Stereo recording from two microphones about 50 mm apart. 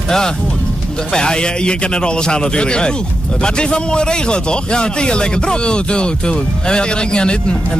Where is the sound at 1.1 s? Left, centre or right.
Centre.